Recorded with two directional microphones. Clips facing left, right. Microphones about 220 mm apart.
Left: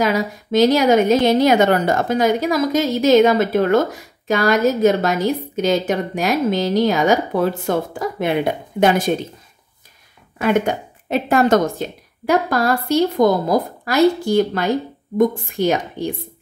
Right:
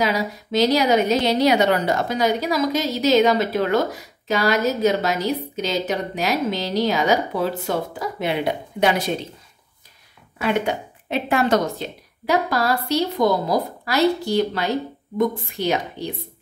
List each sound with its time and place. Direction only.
0.0 s a woman's voice: 50° left (ahead or behind)
10.4 s a woman's voice: 50° left (ahead or behind)